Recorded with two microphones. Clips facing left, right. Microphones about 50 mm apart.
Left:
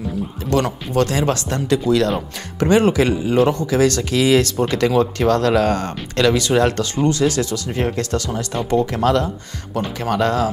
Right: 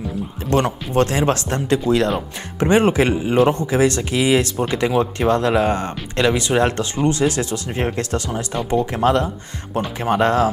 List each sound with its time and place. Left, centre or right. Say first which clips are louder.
0.5 s speech: right 1 dB; right
2.0 s speech: even; centre
2.7 s speech: even; right